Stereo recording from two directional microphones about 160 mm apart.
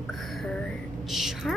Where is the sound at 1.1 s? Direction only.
Centre (ahead or behind).